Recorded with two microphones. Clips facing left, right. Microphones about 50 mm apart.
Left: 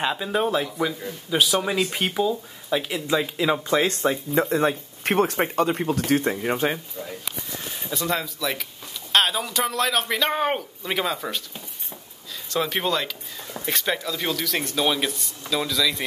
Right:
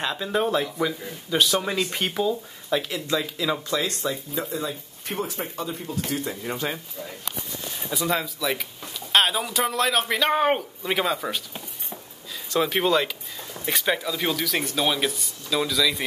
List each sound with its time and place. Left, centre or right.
0.0 s speech: centre
2.8 s speech: centre; by 4.2 s left
4.4 s speech: left
5.9 s speech: left
6.3 s speech: left
7.9 s speech: centre
12.4 s speech: centre